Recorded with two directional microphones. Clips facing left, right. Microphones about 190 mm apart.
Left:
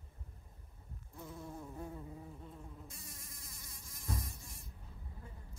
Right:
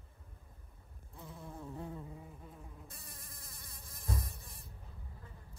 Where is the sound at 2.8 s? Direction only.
60° right (ahead or behind).